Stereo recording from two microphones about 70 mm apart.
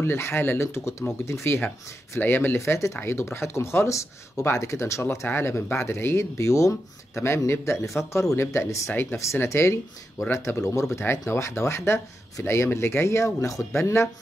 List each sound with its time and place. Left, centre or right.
0.0 s speech: left